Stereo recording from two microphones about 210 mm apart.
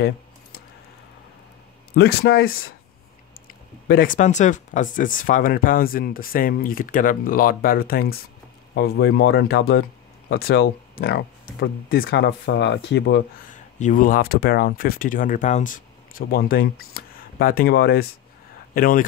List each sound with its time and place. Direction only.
2.0 s speech: 50° left (ahead or behind)
3.8 s speech: 45° left (ahead or behind)
13.5 s speech: 35° left (ahead or behind)